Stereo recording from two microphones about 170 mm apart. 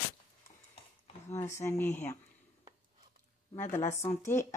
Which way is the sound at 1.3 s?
15° left (ahead or behind).